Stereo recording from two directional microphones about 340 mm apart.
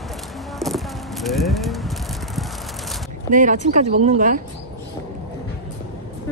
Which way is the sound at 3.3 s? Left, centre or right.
Right.